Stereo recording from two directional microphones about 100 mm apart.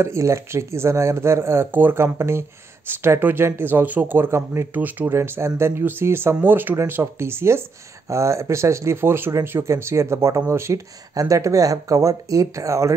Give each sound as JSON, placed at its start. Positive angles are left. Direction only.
{"t": 0.0, "sound": "speech", "side_deg": -30}